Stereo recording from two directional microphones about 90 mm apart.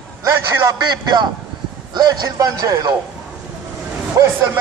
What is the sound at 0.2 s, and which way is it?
A man's voice, 45° right (ahead or behind).